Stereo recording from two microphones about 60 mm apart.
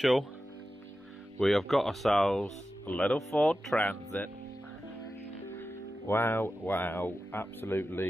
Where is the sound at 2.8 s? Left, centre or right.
Left.